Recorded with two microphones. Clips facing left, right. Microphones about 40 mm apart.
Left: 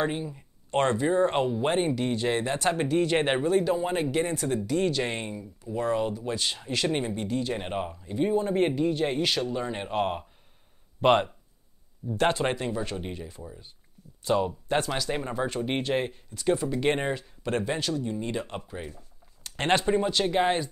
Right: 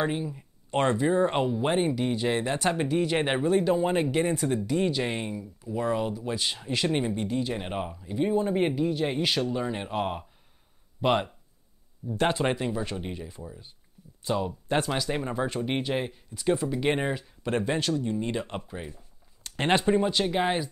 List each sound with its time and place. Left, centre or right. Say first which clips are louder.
0.0 s speech: even; centre
3.5 s speech: right 1 dB; centre
5.0 s speech: right 1 dB; centre
12.0 s speech: left 1 dB; left
12.4 s speech: right 1 dB; centre
14.2 s speech: left 3 dB; centre
14.9 s speech: right 1 dB; centre
16.3 s speech: even; centre
16.7 s speech: even; centre